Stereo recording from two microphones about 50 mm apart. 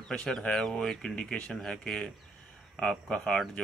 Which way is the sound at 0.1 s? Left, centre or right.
Centre.